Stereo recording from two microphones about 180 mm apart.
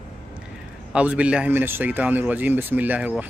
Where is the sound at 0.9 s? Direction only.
5° right (ahead or behind).